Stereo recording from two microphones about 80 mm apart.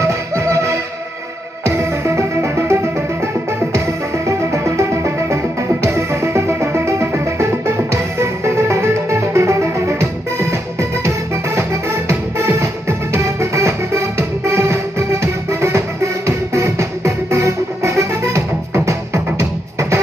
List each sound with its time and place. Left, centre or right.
0.0 s music: right
4.3 s music: right
12.5 s music: right